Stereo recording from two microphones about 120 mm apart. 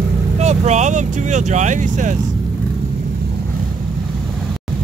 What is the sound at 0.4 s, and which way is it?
Speech, 70° right (ahead or behind).